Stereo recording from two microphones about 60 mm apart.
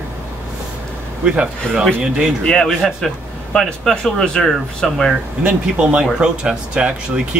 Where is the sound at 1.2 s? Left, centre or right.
Centre.